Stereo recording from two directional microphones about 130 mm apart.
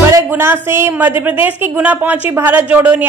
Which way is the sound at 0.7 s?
15° right (ahead or behind).